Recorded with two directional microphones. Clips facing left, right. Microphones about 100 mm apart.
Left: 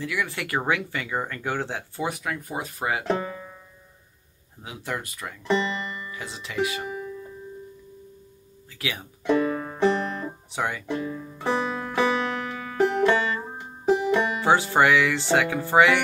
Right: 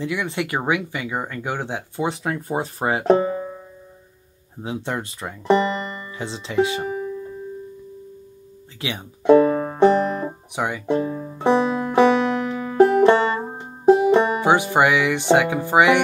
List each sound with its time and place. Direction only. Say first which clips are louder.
0.0 s speech: right 4 dB; 25° right (ahead or behind)
4.6 s speech: right 6 dB; 25° right (ahead or behind)
5.5 s music: right 6 dB; 45° right (ahead or behind)
8.8 s speech: right 3 dB; 25° right (ahead or behind)
9.3 s music: right 9 dB; 35° right (ahead or behind)
10.5 s speech: right 5 dB; 20° right (ahead or behind)
11.0 s banjo: right 7 dB; 35° right (ahead or behind)
14.4 s speech: right 3 dB; 15° right (ahead or behind)